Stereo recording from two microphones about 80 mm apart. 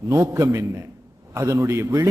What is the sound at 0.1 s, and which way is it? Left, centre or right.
A man's voice, right.